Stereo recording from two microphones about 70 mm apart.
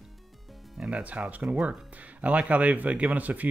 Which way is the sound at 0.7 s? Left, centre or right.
Centre.